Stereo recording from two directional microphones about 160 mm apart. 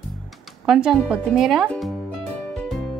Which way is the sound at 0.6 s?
Centre (ahead or behind).